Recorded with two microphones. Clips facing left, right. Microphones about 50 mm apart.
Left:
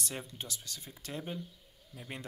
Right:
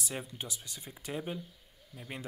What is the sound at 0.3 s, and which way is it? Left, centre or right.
Speech, centre.